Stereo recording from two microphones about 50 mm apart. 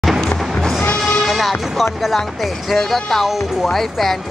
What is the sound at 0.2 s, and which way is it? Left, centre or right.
Music, centre.